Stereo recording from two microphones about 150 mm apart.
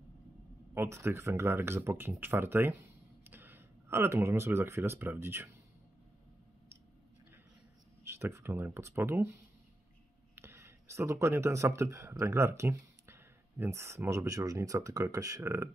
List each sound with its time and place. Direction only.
0.7 s speech: 15° right (ahead or behind)
8.0 s speech: 15° right (ahead or behind)